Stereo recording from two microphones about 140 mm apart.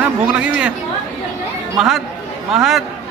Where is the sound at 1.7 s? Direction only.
Centre (ahead or behind).